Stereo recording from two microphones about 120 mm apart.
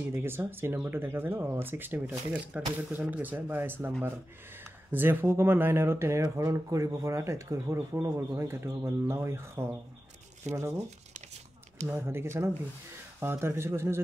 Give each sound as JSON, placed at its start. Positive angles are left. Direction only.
{"t": 0.1, "sound": "speech", "side_deg": -20}
{"t": 4.9, "sound": "speech", "side_deg": -15}
{"t": 11.9, "sound": "speech", "side_deg": -20}